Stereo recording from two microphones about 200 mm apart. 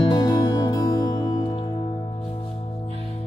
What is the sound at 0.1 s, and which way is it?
Music, 20° left (ahead or behind).